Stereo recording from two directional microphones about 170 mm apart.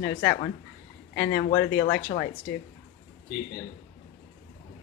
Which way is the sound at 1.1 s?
85° left.